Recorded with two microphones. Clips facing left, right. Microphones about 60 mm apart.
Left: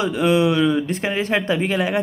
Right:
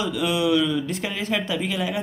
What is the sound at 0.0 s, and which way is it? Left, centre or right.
Speech, left.